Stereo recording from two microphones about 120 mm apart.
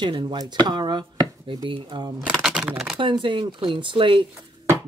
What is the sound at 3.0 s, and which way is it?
Speech, 40° right (ahead or behind).